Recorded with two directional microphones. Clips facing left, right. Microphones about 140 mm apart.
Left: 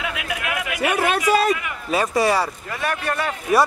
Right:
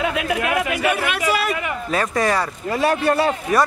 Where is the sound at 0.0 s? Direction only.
35° right (ahead or behind).